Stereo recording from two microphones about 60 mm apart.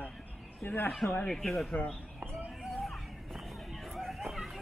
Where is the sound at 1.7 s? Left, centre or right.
Left.